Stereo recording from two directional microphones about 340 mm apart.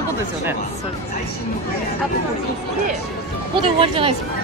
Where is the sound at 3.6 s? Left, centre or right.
Centre.